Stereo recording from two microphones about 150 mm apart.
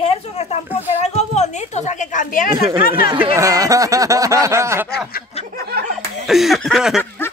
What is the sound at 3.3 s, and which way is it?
Speech, 20° right (ahead or behind).